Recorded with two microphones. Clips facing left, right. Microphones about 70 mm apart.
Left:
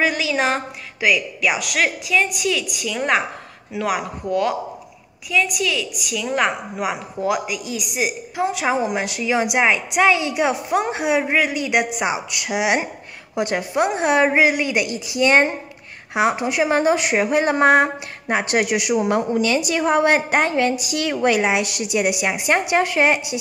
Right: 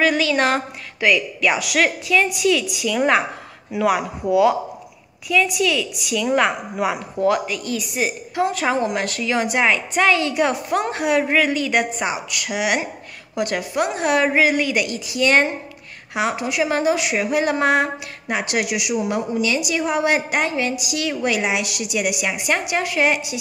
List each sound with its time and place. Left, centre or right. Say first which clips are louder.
0.1 s a woman's voice: right 2 dB; centre; by 23.3 s left